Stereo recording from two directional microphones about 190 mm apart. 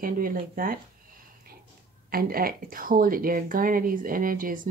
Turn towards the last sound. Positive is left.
turn(degrees=-45)  # may be behind; listen again after turning